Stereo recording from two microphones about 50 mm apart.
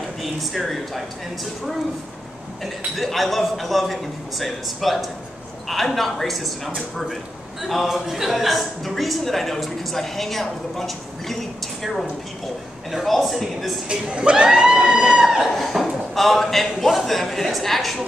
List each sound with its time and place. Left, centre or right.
0.2 s a woman's voice: centre
13.8 s speech: right
15.4 s a woman's voice: centre